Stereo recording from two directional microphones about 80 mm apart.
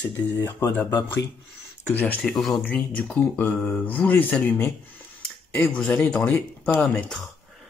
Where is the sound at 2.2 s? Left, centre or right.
Centre.